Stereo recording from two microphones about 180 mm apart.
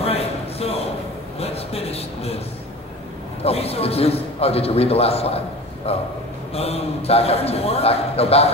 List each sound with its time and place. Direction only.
0.0 s a sound: 35° left (ahead or behind)
1.4 s a man's voice: 35° left (ahead or behind)
3.4 s a man's voice: 35° left (ahead or behind)